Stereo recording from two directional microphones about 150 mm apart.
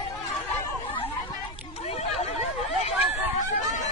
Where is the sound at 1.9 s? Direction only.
45° left (ahead or behind).